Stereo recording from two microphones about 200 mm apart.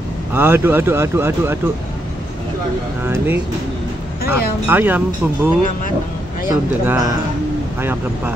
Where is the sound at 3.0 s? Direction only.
10° right (ahead or behind).